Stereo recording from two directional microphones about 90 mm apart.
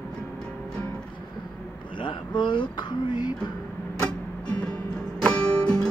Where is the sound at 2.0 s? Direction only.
65° left (ahead or behind).